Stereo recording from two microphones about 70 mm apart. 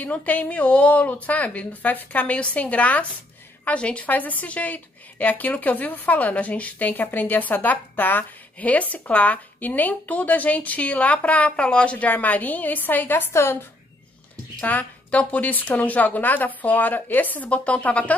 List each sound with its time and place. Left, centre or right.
0.0 s a woman's voice: left
13.3 s a woman's voice: left
14.6 s a woman's voice: left